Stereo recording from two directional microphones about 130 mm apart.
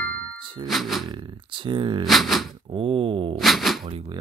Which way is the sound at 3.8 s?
45° right (ahead or behind).